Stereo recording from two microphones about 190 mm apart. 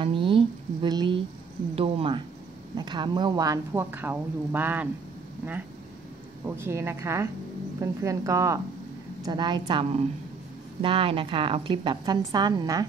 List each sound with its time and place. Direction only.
0.0 s a sound: 25° right (ahead or behind)
2.7 s speech: 25° right (ahead or behind)
6.4 s a woman's voice: 15° right (ahead or behind)